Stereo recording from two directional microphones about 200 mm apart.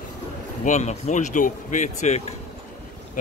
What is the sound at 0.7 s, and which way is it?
Speech, 35° left (ahead or behind).